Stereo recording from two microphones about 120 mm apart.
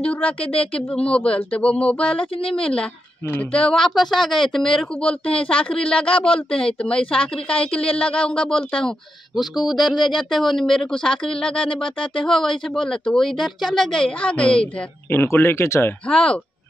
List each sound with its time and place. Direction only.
0.0 s a woman's voice: 10° left (ahead or behind)
15.1 s speech: 20° left (ahead or behind)
16.1 s a woman's voice: 5° left (ahead or behind)